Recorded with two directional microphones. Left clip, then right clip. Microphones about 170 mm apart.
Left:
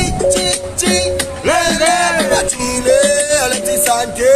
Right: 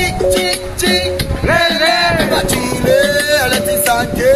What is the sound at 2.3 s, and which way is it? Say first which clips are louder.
Music: right 1 dB; 5° left (ahead or behind).